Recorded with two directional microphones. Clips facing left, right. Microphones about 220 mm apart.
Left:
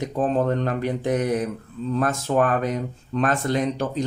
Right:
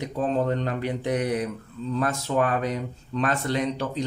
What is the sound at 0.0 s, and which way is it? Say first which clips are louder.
Speech: left 3 dB; 50° left (ahead or behind).